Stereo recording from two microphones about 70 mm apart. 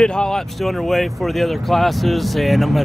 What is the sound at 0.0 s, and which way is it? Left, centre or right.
Speech, centre.